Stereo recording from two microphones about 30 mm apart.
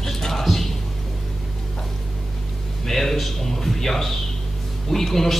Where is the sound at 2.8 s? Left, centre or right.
Centre.